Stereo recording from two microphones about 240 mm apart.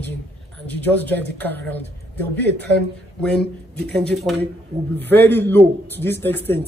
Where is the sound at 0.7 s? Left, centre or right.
Centre.